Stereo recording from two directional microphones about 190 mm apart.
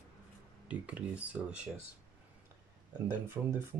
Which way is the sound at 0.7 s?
5° right (ahead or behind).